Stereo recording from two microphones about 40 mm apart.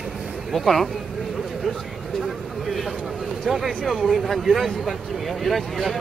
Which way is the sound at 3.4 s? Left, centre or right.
Centre.